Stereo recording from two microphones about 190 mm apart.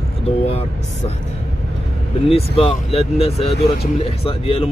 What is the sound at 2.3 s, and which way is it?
Speech, 30° left (ahead or behind).